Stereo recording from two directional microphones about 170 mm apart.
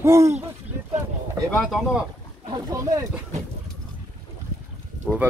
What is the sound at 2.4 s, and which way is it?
Speech, 20° right (ahead or behind).